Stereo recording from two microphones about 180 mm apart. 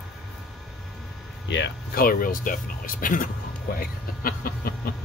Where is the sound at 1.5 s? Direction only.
65° left (ahead or behind).